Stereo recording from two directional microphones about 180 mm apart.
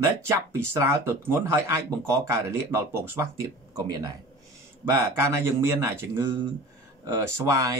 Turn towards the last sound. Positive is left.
turn(degrees=-20)  # may be behind; listen again after turning